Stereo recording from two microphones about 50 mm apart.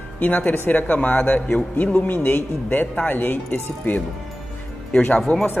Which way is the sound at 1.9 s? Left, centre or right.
Left.